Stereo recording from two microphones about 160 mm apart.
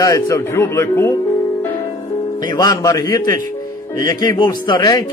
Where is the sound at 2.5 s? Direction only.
25° left (ahead or behind).